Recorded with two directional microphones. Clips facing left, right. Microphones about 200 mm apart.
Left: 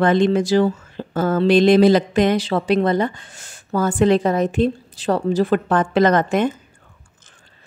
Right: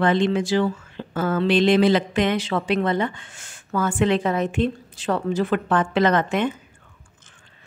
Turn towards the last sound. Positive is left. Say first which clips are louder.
# left 4 dB
turn(degrees=40)  # may be behind; listen again after turning